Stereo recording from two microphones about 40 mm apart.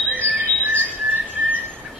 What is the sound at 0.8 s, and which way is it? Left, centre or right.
Whistling, right.